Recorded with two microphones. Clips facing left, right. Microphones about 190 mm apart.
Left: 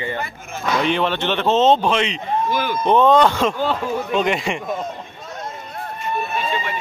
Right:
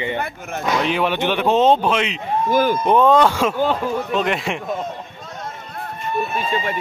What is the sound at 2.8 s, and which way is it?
Speech, 10° right (ahead or behind).